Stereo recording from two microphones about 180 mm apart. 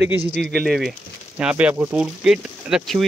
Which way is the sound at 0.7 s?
Centre (ahead or behind).